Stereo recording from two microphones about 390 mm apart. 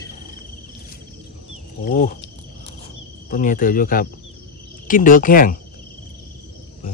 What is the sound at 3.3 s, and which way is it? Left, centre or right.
Speech, left.